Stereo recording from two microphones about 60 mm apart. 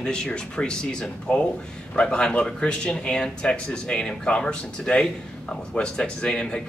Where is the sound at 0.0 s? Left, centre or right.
Centre.